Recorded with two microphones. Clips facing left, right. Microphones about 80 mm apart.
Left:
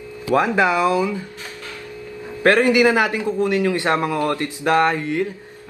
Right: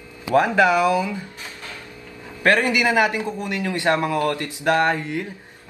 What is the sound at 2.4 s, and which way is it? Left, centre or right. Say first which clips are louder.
Speech: left 4 dB; left.